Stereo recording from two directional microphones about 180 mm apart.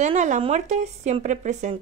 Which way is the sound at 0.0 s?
40° right (ahead or behind).